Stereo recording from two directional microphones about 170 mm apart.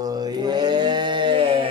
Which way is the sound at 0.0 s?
20° right (ahead or behind).